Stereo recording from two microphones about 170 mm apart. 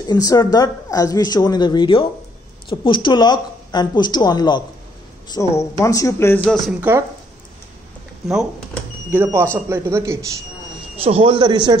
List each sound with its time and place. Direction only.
0.0 s speech: 20° left (ahead or behind)
6.8 s a man's voice: 10° right (ahead or behind)
9.1 s a man's voice: 15° right (ahead or behind)
11.1 s speech: 35° right (ahead or behind)